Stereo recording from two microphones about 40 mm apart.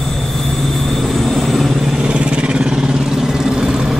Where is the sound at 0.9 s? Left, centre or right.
Centre.